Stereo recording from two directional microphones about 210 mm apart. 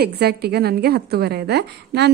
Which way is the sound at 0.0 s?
50° right (ahead or behind).